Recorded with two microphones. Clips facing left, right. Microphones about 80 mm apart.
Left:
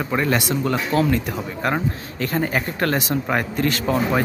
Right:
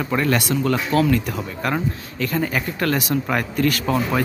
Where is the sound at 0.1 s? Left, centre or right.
Centre.